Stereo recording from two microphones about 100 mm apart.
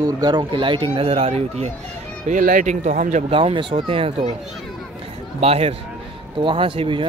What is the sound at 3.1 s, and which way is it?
Speech, 85° right.